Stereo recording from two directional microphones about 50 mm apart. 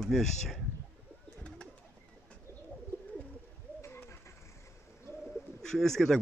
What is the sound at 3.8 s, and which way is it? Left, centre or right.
Bird, left.